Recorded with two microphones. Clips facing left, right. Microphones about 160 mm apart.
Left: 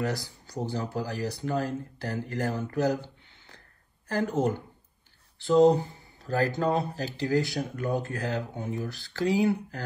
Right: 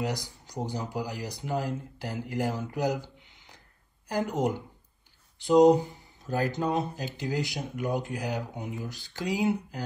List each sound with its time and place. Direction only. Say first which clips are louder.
0.0 s speech: left 1 dB; 15° right (ahead or behind)
3.3 s a sound: left 1 dB; 15° right (ahead or behind)
4.1 s speech: left 1 dB; 15° right (ahead or behind)